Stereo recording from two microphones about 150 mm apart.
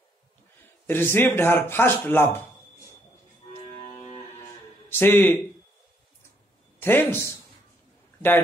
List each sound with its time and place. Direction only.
0.8 s speech: 15° left (ahead or behind)
3.5 s music: 40° left (ahead or behind)
4.8 s speech: 15° left (ahead or behind)
6.8 s speech: 15° left (ahead or behind)